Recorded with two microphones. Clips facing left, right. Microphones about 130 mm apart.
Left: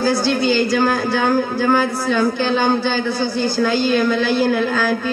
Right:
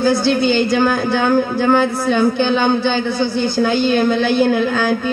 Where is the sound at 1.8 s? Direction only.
20° right (ahead or behind).